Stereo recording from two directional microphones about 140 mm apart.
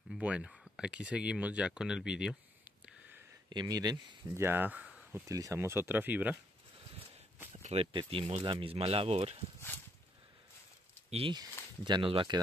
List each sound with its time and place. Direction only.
0.1 s speech: 5° right (ahead or behind)
3.4 s speech: 30° right (ahead or behind); by 5.2 s 10° right (ahead or behind)
5.3 s speech: 20° right (ahead or behind)
7.5 s speech: 45° right (ahead or behind)
11.1 s speech: 45° right (ahead or behind)